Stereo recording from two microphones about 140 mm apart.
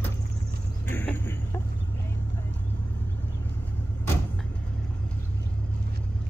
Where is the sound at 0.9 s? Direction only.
15° left (ahead or behind).